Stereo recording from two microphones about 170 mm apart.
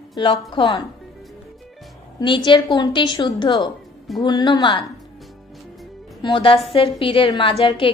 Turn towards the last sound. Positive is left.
turn(degrees=30)  # may be behind; listen again after turning